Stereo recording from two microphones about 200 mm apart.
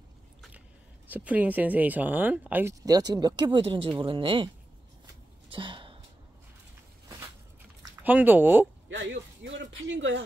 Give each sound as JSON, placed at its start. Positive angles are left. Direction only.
{"t": 1.1, "sound": "speech", "side_deg": -10}
{"t": 5.5, "sound": "a sound", "side_deg": -25}
{"t": 7.9, "sound": "speech", "side_deg": -10}
{"t": 8.8, "sound": "speech", "side_deg": -65}